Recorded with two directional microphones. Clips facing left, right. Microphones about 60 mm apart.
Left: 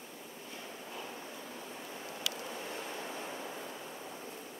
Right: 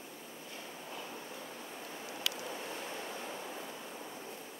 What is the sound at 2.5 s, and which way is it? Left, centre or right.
Vehicle, centre.